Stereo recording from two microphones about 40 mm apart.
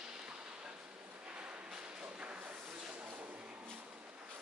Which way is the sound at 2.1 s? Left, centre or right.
Right.